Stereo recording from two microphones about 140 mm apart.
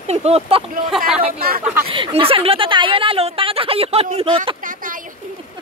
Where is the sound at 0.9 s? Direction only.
5° right (ahead or behind).